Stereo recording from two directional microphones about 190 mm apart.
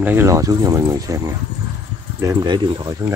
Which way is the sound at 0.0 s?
10° right (ahead or behind).